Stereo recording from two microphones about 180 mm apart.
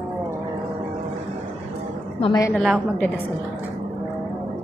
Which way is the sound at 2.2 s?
20° left (ahead or behind).